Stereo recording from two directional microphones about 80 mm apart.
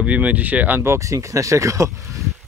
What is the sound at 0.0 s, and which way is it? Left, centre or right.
Speech, centre.